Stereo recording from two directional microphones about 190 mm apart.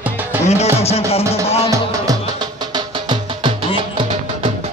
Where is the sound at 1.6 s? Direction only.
20° right (ahead or behind).